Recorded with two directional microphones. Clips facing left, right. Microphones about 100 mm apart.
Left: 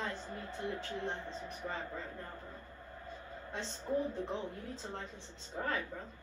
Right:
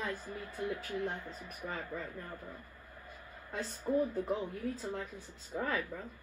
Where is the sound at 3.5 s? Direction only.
25° left (ahead or behind).